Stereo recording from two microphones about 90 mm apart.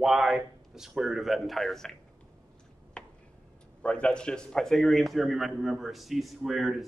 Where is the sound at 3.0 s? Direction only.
10° left (ahead or behind).